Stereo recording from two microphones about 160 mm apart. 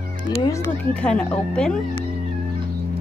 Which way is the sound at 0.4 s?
20° left (ahead or behind).